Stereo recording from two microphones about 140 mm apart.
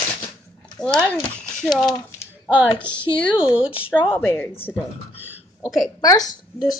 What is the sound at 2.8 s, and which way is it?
Speech, 10° left (ahead or behind).